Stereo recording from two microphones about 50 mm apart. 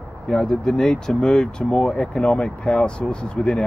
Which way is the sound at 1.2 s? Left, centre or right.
Left.